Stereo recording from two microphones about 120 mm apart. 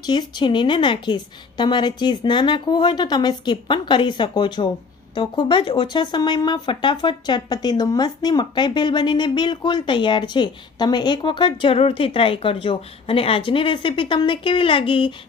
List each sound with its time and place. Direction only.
0.0 s speech: 40° left (ahead or behind)